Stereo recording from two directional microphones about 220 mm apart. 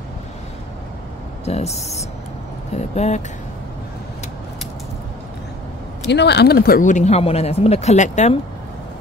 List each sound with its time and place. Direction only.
1.4 s speech: 30° left (ahead or behind)
6.0 s speech: 50° left (ahead or behind); by 8.4 s 30° left (ahead or behind)